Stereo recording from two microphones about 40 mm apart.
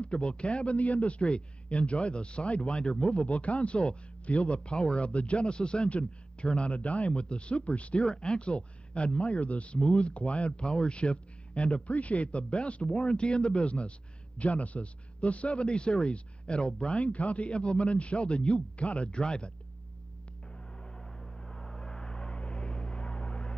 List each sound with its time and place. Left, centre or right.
0.0 s a man's voice: left
20.5 s vehicle: centre; by 23.5 s left